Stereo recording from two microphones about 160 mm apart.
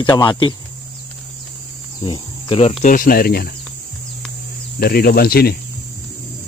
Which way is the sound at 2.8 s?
55° left (ahead or behind).